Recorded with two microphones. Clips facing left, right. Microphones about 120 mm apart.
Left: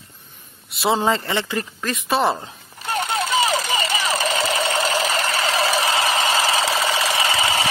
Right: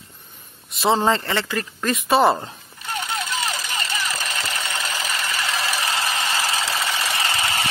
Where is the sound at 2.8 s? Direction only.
80° left.